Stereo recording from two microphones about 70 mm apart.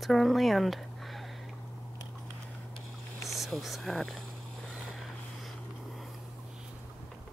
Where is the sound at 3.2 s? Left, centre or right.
Centre.